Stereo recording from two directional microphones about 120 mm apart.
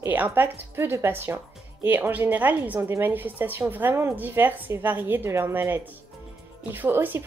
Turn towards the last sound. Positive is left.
turn(degrees=-15)  # may be behind; listen again after turning